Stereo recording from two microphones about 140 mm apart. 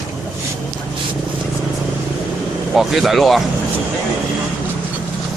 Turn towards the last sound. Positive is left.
turn(degrees=0)  # may be behind; listen again after turning